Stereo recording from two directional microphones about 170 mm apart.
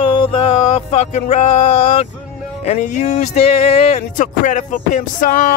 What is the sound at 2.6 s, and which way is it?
Speech, 45° left (ahead or behind).